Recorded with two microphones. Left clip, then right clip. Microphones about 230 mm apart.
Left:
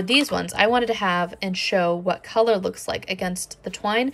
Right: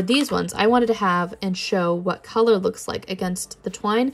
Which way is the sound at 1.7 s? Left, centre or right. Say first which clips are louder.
Even; right.